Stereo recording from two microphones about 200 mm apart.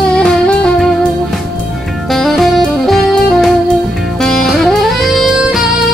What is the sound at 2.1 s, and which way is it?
Saxophone, centre (ahead or behind).